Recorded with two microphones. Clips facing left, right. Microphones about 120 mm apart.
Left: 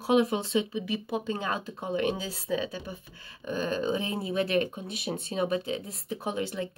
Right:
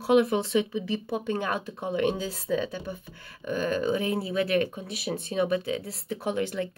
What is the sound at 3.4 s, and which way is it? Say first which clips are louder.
Speech: right 3 dB; 25° left (ahead or behind).